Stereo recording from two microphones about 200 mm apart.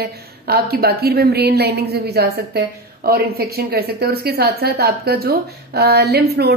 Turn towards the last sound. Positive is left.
turn(degrees=-55)  # may be behind; listen again after turning